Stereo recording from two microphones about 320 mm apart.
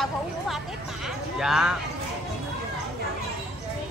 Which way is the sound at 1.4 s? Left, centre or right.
Centre.